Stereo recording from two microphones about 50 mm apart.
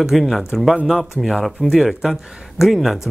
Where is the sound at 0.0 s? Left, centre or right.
Centre.